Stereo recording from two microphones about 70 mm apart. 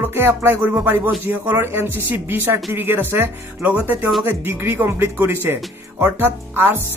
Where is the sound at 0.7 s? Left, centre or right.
Right.